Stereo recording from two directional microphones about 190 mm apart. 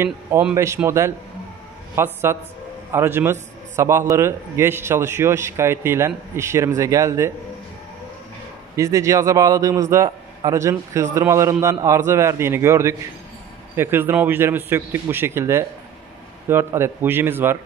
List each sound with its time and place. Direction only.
0.0 s a man's voice: 10° right (ahead or behind)
8.7 s a man's voice: 15° right (ahead or behind)